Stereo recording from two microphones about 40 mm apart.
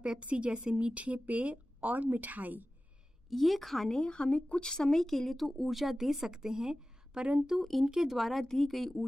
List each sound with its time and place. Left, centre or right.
0.2 s speech: right
3.3 s speech: centre
3.9 s a woman's voice: left
4.6 s speech: centre
7.2 s speech: right
7.8 s speech: centre